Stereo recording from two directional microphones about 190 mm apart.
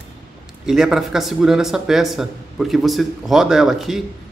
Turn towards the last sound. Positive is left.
turn(degrees=0)  # may be behind; listen again after turning